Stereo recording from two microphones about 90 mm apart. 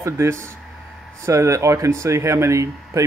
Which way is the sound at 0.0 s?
30° right (ahead or behind).